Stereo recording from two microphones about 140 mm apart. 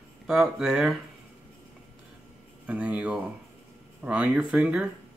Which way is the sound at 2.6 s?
10° right (ahead or behind).